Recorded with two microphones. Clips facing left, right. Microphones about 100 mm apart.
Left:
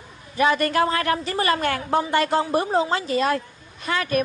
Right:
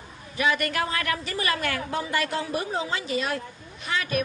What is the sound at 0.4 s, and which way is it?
A woman's voice, 35° left (ahead or behind).